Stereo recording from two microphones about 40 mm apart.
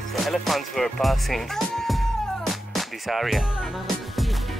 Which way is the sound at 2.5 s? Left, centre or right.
Centre.